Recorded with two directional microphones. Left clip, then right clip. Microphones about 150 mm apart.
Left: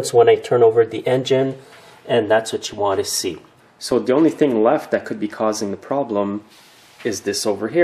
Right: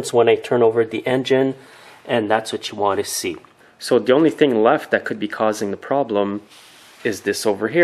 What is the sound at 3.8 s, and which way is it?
Speech, 30° right (ahead or behind).